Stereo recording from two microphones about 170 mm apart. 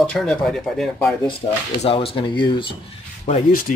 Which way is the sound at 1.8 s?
35° left (ahead or behind).